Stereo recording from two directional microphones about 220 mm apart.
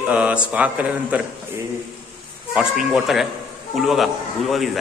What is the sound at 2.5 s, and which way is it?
A man's voice, centre (ahead or behind).